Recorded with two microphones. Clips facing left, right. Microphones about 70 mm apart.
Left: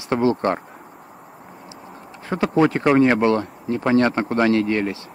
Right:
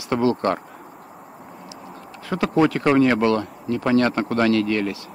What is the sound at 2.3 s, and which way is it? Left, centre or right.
Speech, left.